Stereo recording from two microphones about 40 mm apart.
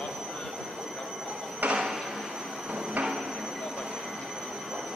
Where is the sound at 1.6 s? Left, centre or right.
Right.